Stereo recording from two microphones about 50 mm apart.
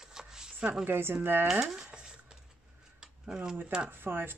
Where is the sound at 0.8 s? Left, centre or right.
Right.